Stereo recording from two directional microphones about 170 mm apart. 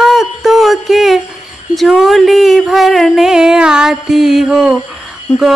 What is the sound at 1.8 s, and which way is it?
Speech, centre (ahead or behind).